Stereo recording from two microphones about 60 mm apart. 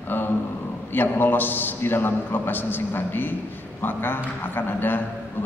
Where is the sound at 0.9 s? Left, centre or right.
Left.